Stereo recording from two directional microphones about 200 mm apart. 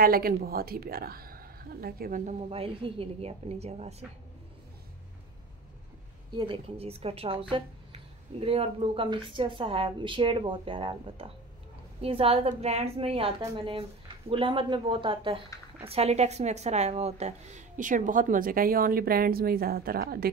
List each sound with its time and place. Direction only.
0.0 s a woman's voice: 45° right (ahead or behind)
2.5 s speech: 30° right (ahead or behind)
6.3 s speech: 25° right (ahead or behind); by 20.2 s 50° right (ahead or behind)